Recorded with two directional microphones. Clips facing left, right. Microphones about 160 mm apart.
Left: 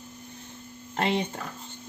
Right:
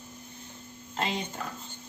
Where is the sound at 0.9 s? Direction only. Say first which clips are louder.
Left 5 dB; 60° left (ahead or behind).